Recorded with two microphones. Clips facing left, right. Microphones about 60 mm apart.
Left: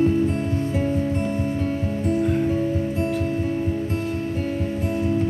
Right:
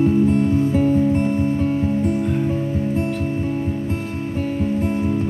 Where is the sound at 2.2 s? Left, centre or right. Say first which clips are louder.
Even; centre.